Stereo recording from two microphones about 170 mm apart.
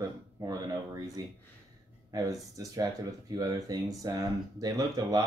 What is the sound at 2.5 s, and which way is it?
Speech, 20° right (ahead or behind).